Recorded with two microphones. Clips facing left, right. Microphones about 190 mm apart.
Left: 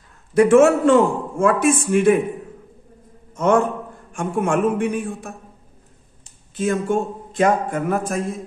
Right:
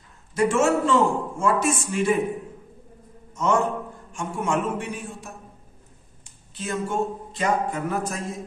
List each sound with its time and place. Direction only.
0.3 s a man's voice: 60° left (ahead or behind)
3.3 s a man's voice: 55° left (ahead or behind)
6.5 s a man's voice: 50° left (ahead or behind)